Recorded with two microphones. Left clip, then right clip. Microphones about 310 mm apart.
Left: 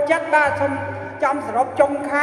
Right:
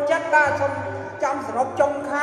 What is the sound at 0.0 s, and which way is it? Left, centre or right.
A woman's voice, left.